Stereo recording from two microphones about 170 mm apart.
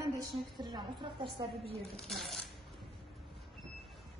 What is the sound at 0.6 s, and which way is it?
Speech, 25° right (ahead or behind).